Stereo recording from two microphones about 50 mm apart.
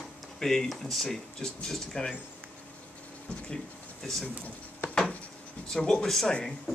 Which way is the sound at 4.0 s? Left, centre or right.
Centre.